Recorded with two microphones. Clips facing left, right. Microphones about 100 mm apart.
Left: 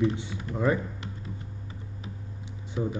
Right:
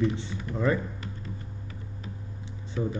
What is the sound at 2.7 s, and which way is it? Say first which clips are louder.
Speech: even; 15° left (ahead or behind).